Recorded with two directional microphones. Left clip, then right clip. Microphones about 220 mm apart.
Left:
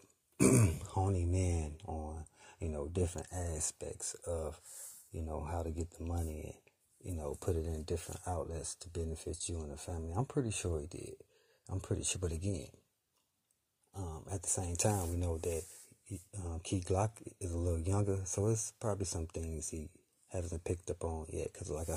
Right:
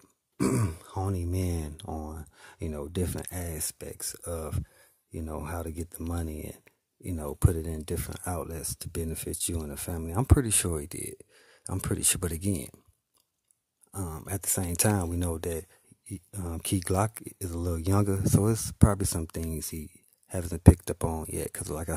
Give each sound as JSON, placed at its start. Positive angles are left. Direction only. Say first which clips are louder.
{"t": 0.4, "sound": "grunt", "louder": "right 1 dB", "side_deg": -15}
{"t": 1.9, "sound": "a sound", "louder": "right 6 dB", "side_deg": -35}
{"t": 3.3, "sound": "speech", "louder": "right 3 dB", "side_deg": -25}
{"t": 13.9, "sound": "speech", "louder": "right 8 dB", "side_deg": -35}